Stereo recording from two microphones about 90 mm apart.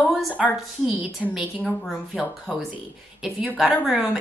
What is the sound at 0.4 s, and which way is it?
A woman's voice, 5° right (ahead or behind).